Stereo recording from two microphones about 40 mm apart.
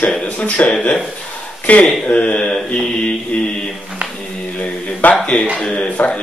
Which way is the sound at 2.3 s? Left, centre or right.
Centre.